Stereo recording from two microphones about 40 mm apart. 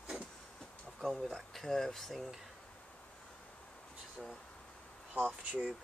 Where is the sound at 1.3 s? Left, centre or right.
Centre.